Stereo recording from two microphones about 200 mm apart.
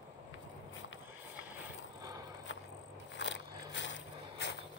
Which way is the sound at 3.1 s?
65° left (ahead or behind).